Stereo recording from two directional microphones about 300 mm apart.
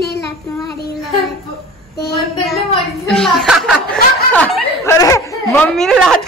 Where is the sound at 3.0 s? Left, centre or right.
Centre.